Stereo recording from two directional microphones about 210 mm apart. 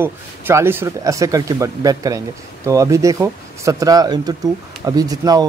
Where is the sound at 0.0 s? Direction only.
10° right (ahead or behind).